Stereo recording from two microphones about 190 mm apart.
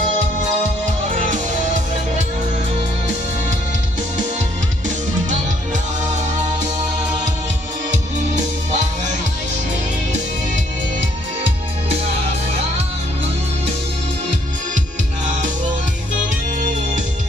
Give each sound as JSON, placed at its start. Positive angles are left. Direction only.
{"t": 1.1, "sound": "music", "side_deg": -40}
{"t": 7.9, "sound": "music", "side_deg": -40}